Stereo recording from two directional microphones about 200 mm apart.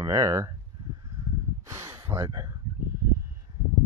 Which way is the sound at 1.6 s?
15° right (ahead or behind).